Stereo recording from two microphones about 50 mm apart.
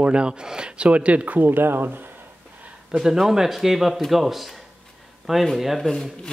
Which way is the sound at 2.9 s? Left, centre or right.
Centre.